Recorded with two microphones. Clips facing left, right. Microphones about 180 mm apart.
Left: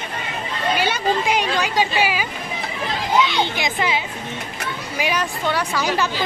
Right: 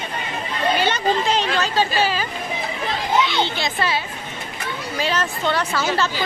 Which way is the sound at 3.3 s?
15° left (ahead or behind).